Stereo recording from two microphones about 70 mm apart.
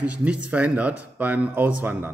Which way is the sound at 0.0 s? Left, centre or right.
Centre.